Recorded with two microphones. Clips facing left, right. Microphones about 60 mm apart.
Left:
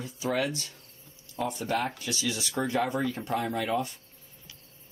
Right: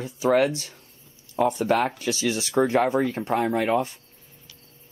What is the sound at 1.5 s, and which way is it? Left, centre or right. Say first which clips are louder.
Speech: right 7 dB; right.